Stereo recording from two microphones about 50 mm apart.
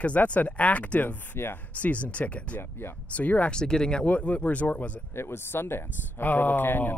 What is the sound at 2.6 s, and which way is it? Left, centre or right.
Speech, left.